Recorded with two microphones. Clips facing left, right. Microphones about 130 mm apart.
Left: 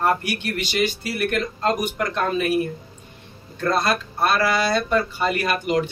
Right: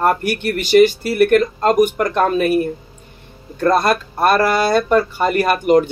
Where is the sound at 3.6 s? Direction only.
50° right (ahead or behind).